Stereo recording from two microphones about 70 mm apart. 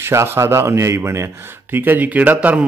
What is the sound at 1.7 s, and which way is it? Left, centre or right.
Speech, right.